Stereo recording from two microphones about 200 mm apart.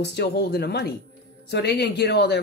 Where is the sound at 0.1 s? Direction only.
55° left (ahead or behind).